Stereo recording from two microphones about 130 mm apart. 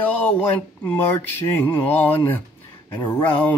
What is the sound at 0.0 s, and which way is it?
Mantra, 15° left (ahead or behind).